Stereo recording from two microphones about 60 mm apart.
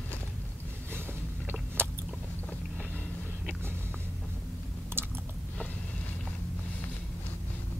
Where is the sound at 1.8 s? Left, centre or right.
Right.